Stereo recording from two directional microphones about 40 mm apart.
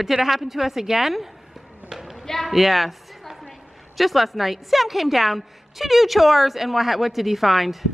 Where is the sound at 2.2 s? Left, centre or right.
Centre.